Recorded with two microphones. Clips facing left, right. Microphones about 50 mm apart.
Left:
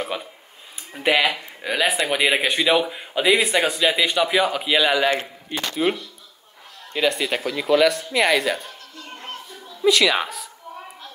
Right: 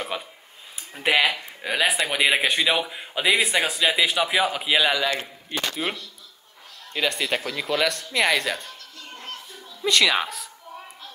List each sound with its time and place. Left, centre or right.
0.0 s a man's voice: centre
5.0 s speech: left
5.5 s a man's voice: centre
6.9 s a man's voice: centre
9.1 s children playing: centre
9.9 s a man's voice: centre